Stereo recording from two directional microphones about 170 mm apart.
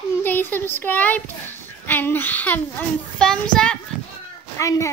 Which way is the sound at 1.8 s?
10° left (ahead or behind).